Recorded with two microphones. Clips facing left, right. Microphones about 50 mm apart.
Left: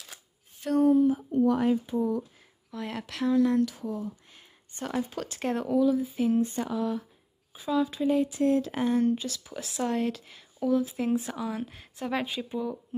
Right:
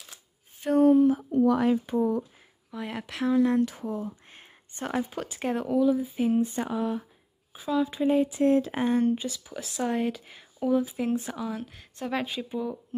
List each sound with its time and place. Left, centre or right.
1.0 s speech: right
2.0 s speech: right
2.7 s speech: centre
3.6 s speech: right
5.1 s speech: centre
7.5 s speech: centre
8.0 s speech: right
9.0 s speech: centre
9.4 s speech: centre
9.8 s speech: centre
10.9 s speech: centre